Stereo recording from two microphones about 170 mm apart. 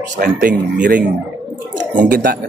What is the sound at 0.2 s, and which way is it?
Speech, 60° right (ahead or behind).